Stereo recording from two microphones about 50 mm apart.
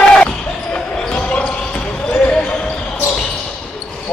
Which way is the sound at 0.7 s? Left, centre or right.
Left.